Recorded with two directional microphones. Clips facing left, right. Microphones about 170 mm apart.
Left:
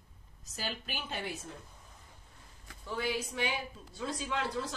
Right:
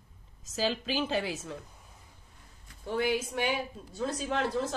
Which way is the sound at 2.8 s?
55° right (ahead or behind).